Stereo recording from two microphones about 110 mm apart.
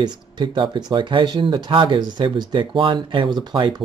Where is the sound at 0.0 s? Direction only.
45° right (ahead or behind).